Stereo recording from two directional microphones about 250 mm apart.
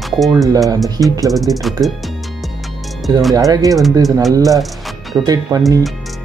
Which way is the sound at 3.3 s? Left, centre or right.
Centre.